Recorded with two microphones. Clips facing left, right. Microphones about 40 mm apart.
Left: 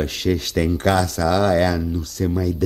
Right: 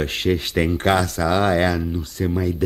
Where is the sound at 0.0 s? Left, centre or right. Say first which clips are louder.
Even; right.